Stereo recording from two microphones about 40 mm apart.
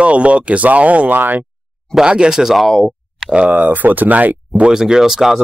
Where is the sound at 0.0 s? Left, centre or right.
Right.